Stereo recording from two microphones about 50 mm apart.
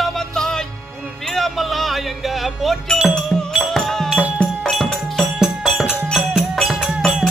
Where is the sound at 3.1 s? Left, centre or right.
Centre.